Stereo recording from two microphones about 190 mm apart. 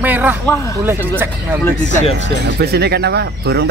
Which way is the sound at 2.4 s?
55° right (ahead or behind).